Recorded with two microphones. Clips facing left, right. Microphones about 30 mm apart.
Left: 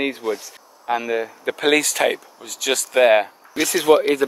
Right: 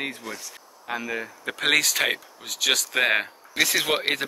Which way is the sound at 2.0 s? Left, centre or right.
Centre.